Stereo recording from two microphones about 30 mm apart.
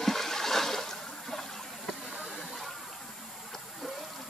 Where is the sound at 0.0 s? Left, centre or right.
Centre.